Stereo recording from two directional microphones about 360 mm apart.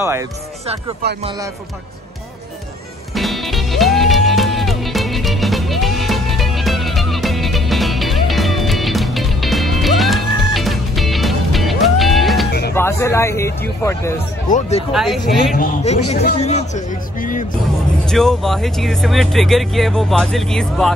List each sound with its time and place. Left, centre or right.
0.0 s speech: centre
3.2 s music: centre
12.7 s speech: centre
14.9 s speech: centre
15.5 s speech: centre
18.0 s speech: centre